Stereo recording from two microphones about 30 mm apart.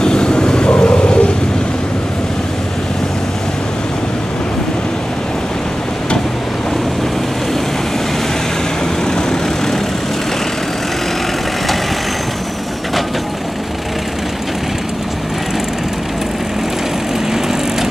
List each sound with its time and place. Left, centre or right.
0.0 s vehicle: left